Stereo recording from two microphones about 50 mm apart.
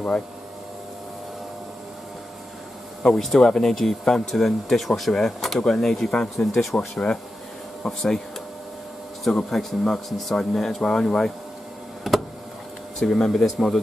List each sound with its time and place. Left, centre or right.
3.1 s speech: centre
7.8 s speech: centre
9.2 s speech: centre
12.1 s a sound: centre
13.0 s speech: centre